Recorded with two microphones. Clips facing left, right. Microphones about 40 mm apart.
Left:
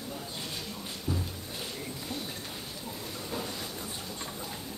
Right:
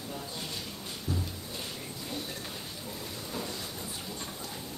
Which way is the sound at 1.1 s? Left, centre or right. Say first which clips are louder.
Left 1 dB; left.